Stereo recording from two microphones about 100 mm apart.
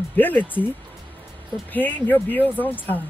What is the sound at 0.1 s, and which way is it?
Speech, 20° left (ahead or behind).